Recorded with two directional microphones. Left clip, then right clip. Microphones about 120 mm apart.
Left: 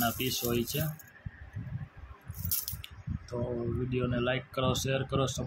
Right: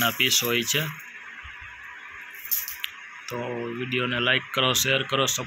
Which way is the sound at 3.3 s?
5° left (ahead or behind).